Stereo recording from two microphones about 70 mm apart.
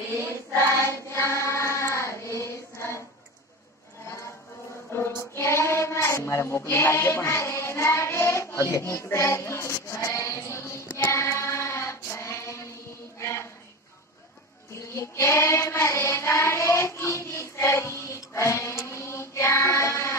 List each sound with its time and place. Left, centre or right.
0.8 s child singing: left
4.9 s child singing: left
13.2 s a sound: left
14.8 s child singing: left